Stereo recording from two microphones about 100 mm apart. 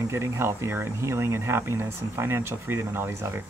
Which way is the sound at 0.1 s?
25° right (ahead or behind).